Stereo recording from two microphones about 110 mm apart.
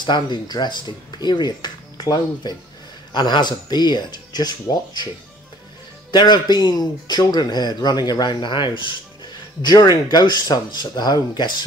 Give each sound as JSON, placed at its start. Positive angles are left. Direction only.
{"t": 0.0, "sound": "a man's voice", "side_deg": 45}
{"t": 6.1, "sound": "a man's voice", "side_deg": 40}